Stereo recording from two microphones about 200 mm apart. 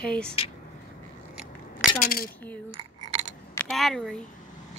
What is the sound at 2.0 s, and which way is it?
Speech, 45° left (ahead or behind).